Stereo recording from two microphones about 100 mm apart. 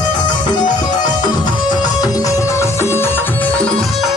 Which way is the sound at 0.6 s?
45° left (ahead or behind).